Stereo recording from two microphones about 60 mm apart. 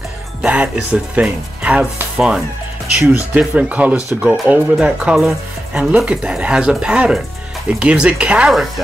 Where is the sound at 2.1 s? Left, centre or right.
Centre.